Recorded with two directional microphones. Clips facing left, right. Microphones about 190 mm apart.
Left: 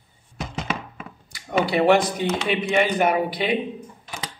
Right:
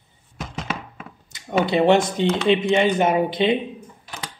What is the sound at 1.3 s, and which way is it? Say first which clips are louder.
Speech: right 2 dB; 20° right (ahead or behind).